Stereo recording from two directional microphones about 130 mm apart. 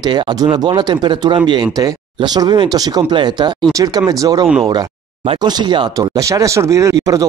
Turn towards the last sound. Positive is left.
turn(degrees=-25)  # may be behind; listen again after turning